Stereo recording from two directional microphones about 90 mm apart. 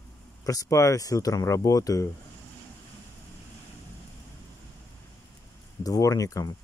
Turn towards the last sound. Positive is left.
turn(degrees=40)  # may be behind; listen again after turning